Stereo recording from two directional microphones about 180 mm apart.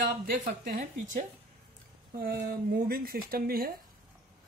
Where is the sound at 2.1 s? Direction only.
60° right (ahead or behind).